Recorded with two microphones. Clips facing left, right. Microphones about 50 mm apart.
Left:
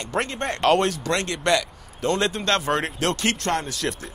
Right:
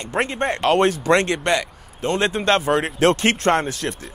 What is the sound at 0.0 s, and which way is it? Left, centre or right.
Speech, right.